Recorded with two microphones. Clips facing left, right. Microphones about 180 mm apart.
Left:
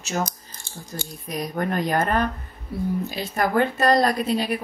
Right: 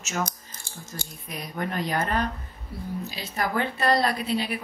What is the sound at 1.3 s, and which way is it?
Speech, 45° left (ahead or behind).